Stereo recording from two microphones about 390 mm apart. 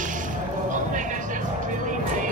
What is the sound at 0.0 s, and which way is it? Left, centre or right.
Music, centre.